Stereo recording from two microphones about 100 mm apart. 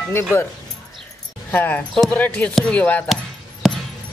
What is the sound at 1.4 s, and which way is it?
Speech, 20° left (ahead or behind).